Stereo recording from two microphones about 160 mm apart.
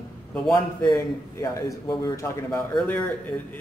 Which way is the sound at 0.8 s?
25° left (ahead or behind).